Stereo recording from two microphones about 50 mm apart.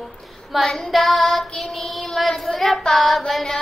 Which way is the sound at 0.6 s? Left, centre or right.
Centre.